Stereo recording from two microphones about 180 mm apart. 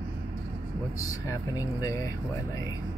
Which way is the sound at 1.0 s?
20° left (ahead or behind).